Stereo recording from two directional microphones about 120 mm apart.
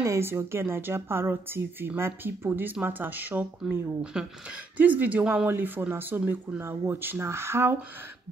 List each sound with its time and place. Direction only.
0.0 s a woman's voice: 20° right (ahead or behind)